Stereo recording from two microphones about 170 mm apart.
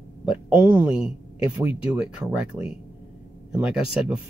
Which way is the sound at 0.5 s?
10° right (ahead or behind).